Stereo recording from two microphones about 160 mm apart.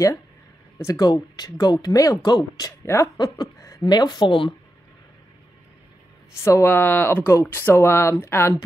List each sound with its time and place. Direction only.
0.7 s speech: 20° left (ahead or behind)
6.4 s speech: 15° left (ahead or behind)